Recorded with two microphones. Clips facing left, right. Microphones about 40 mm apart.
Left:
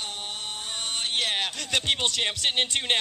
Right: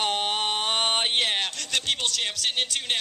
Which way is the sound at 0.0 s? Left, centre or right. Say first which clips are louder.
Right 9 dB; right.